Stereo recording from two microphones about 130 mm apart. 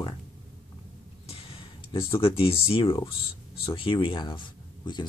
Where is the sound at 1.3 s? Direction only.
50° left (ahead or behind).